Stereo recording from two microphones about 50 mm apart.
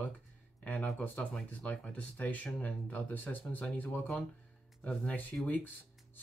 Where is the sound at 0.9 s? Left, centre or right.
Left.